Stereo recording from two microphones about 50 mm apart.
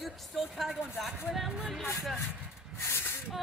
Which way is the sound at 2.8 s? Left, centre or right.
Left.